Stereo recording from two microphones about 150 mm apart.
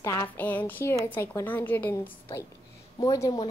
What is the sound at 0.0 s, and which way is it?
Speech, 20° left (ahead or behind).